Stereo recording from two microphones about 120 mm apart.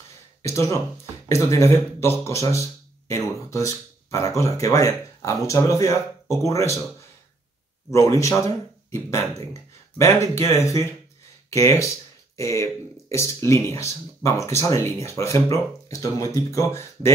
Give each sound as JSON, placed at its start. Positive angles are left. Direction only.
{"t": 0.4, "sound": "speech", "side_deg": 25}
{"t": 7.9, "sound": "speech", "side_deg": 25}